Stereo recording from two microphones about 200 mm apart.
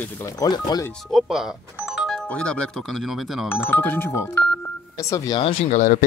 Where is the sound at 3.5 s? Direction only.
10° left (ahead or behind).